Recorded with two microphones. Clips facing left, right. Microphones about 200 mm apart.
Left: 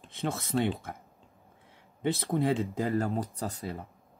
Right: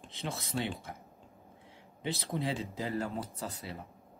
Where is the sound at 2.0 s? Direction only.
55° left (ahead or behind).